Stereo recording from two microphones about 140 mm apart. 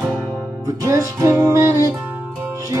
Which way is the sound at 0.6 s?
25° right (ahead or behind).